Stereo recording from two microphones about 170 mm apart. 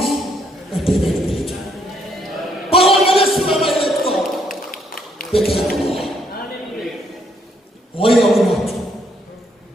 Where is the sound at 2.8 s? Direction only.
Centre (ahead or behind).